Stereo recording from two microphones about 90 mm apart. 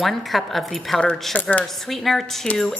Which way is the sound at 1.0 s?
10° left (ahead or behind).